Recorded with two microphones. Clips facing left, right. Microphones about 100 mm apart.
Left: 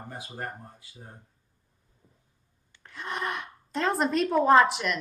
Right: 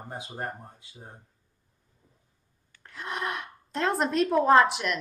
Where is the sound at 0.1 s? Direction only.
20° right (ahead or behind).